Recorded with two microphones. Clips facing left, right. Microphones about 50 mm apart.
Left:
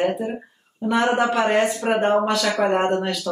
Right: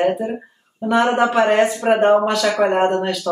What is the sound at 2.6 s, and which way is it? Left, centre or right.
Speech, centre.